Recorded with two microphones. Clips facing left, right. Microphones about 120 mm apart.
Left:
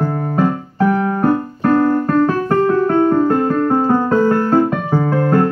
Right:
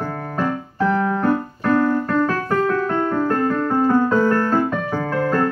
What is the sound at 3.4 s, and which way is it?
Music, 30° left (ahead or behind).